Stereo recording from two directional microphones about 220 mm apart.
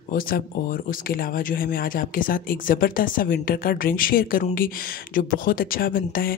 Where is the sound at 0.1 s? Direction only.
40° left (ahead or behind).